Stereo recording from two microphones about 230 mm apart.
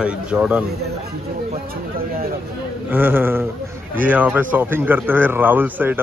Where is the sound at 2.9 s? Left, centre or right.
Centre.